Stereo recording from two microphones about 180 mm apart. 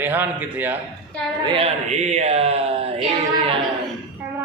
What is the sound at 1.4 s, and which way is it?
Speech, 30° right (ahead or behind).